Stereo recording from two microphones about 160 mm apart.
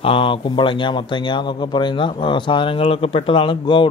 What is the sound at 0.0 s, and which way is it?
Speech, 35° left (ahead or behind).